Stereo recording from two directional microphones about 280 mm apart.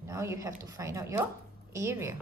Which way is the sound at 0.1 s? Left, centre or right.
Centre.